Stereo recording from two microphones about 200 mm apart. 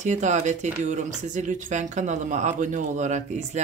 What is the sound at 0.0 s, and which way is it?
Speech, 35° right (ahead or behind).